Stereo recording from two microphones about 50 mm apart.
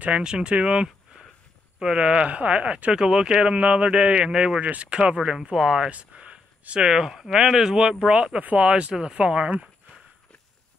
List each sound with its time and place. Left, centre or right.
0.0 s speech: centre
4.6 s speech: right
5.1 s speech: centre
5.9 s a sound: right
6.9 s speech: centre
8.4 s speech: right